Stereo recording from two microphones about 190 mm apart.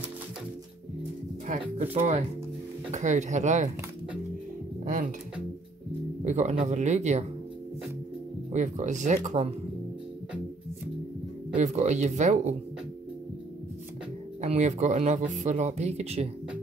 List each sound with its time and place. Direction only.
1.6 s speech: 35° right (ahead or behind)
4.8 s speech: 45° right (ahead or behind)
6.2 s speech: 40° right (ahead or behind)
8.5 s speech: 40° right (ahead or behind)
11.5 s speech: 40° right (ahead or behind)
14.4 s speech: 35° right (ahead or behind)